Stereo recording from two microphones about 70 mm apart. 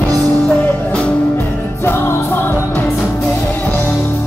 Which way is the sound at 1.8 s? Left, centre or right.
Left.